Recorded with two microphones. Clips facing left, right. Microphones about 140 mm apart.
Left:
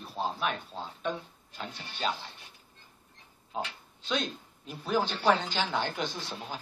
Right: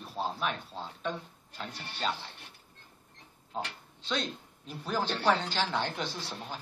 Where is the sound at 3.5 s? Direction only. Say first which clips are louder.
Left 1 dB; 5° left (ahead or behind).